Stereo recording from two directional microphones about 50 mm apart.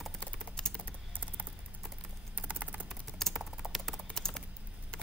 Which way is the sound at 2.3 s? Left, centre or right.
Right.